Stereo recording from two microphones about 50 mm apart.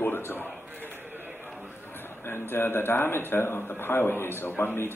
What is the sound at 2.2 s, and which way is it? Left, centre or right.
A man's voice, left.